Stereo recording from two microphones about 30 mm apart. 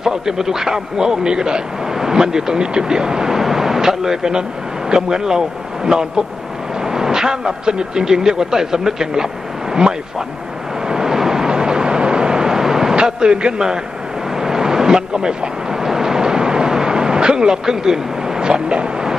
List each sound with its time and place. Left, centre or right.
0.0 s speech: centre
3.3 s speech: centre
10.9 s vehicle: centre
12.9 s a sound: right
14.3 s a sound: centre
15.0 s speech: right
15.8 s vehicle: centre